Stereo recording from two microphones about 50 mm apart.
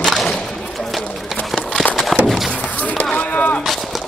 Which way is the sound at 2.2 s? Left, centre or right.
Centre.